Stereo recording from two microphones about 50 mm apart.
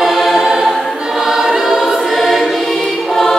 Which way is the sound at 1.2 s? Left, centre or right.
Centre.